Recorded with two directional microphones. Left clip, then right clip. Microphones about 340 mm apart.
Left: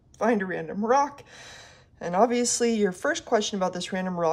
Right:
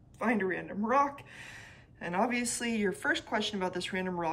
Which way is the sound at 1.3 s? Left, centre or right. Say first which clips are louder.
Left 2 dB; centre.